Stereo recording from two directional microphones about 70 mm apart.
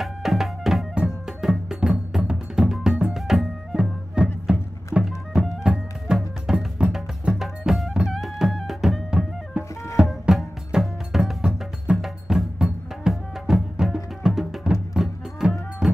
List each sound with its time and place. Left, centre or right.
0.0 s music: centre
0.9 s music: centre
10.2 s music: centre